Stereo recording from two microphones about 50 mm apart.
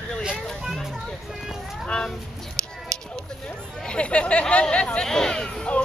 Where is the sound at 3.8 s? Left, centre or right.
Left.